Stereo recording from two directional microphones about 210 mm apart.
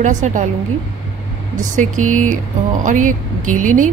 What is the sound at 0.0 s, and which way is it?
Speech, 35° right (ahead or behind).